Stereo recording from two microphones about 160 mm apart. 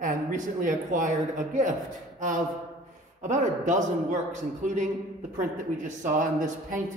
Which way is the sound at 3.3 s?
50° right (ahead or behind).